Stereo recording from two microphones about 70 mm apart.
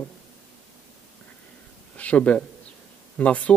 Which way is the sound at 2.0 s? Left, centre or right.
Centre.